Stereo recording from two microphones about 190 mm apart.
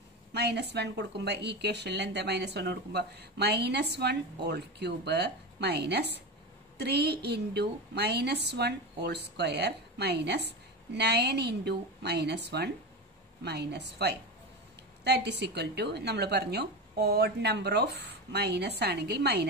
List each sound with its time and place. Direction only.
0.3 s a woman's voice: 60° right (ahead or behind)